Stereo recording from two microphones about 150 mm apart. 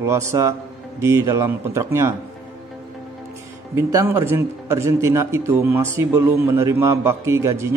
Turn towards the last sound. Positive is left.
turn(degrees=-20)  # may be behind; listen again after turning